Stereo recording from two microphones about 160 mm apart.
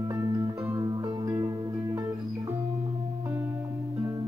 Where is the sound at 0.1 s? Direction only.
20° right (ahead or behind).